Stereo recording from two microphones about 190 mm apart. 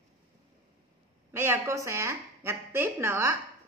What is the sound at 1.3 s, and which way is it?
A woman's voice, 15° right (ahead or behind).